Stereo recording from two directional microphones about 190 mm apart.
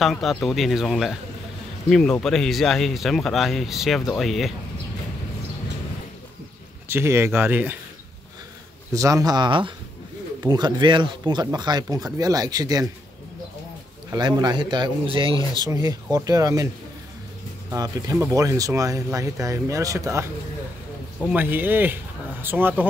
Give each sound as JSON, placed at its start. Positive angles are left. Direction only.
{"t": 0.0, "sound": "speech", "side_deg": 0}
{"t": 6.9, "sound": "speech", "side_deg": -10}
{"t": 8.9, "sound": "speech", "side_deg": -15}
{"t": 14.1, "sound": "speech", "side_deg": -20}
{"t": 17.6, "sound": "speech", "side_deg": -20}
{"t": 21.3, "sound": "speech", "side_deg": -10}